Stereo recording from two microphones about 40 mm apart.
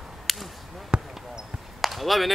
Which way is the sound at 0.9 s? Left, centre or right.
Right.